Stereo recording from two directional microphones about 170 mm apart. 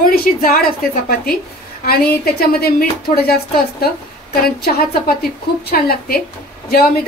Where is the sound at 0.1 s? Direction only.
60° left (ahead or behind).